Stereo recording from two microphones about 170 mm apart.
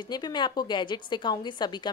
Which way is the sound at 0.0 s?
25° left (ahead or behind).